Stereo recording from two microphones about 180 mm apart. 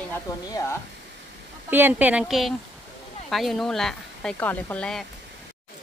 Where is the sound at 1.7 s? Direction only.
10° right (ahead or behind).